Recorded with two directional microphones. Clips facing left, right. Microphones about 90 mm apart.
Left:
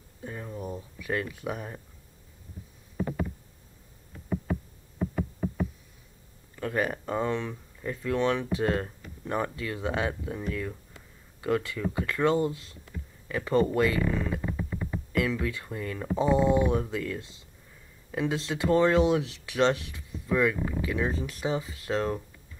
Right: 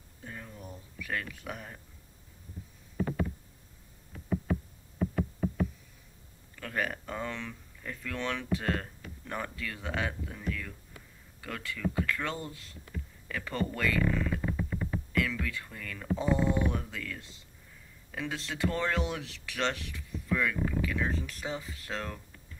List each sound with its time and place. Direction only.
0.2 s speech: 25° left (ahead or behind)
5.1 s insect: 10° left (ahead or behind)
6.5 s speech: 20° left (ahead or behind)
14.4 s a sound: 5° left (ahead or behind)
15.1 s speech: 20° left (ahead or behind)